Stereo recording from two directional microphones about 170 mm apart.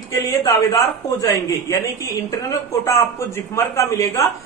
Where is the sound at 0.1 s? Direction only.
20° left (ahead or behind).